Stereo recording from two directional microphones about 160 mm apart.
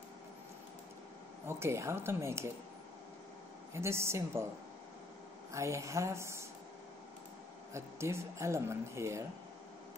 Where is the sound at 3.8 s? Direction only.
15° right (ahead or behind).